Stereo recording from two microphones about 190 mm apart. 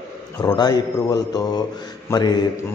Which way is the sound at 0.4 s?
20° left (ahead or behind).